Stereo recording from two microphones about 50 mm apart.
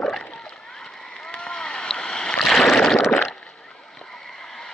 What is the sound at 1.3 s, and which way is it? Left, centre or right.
Rowboat, centre.